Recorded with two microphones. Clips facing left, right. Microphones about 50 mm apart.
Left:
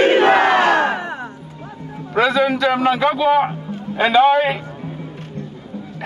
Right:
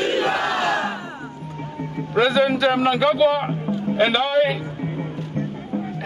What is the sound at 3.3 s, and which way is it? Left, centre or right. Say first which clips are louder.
A man's voice: left 4 dB; left.